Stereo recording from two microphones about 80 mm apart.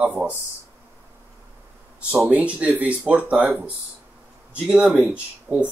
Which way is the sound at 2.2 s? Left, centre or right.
Centre.